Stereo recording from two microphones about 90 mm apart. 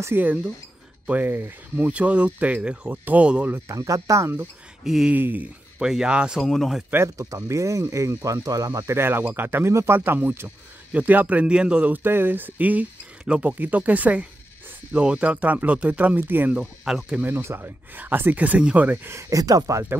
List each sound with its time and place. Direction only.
0.0 s speech: 20° right (ahead or behind)
3.5 s speech: 35° right (ahead or behind)
4.8 s speech: 5° right (ahead or behind)
5.1 s speech: 20° right (ahead or behind)
5.8 s speech: 10° right (ahead or behind)
6.4 s speech: 5° left (ahead or behind)
7.2 s speech: 40° right (ahead or behind); by 16.6 s 20° right (ahead or behind)
16.8 s speech: 5° right (ahead or behind)
17.2 s speech: 25° right (ahead or behind)
19.1 s speech: 40° right (ahead or behind)